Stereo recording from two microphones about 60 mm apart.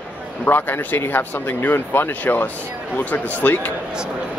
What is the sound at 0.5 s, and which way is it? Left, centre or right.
Speech, left.